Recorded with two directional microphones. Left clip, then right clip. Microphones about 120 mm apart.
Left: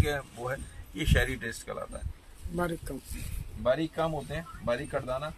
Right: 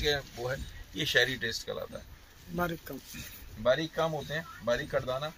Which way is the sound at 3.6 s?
15° right (ahead or behind).